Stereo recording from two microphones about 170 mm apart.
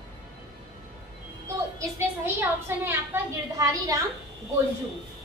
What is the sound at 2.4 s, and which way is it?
A woman's voice, 15° right (ahead or behind).